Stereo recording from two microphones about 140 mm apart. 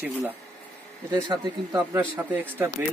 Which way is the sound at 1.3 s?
20° right (ahead or behind).